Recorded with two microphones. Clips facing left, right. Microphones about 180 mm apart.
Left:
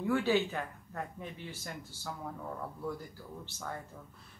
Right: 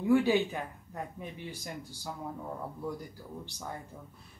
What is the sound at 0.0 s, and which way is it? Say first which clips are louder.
Speech: right 4 dB; 15° right (ahead or behind).